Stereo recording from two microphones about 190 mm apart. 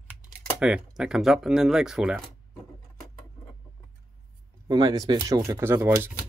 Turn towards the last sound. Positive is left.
turn(degrees=-10)  # may be behind; listen again after turning